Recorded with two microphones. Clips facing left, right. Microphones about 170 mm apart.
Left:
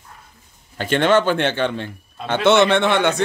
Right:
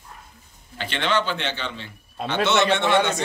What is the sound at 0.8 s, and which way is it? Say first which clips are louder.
A man's voice: left 8 dB; 45° left (ahead or behind).